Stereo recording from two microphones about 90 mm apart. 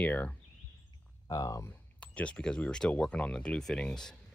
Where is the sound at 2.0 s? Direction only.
15° left (ahead or behind).